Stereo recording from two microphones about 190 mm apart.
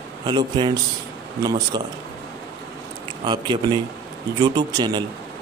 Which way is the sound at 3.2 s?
25° right (ahead or behind).